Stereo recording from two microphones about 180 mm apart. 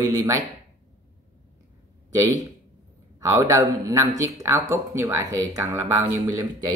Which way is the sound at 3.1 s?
15° right (ahead or behind).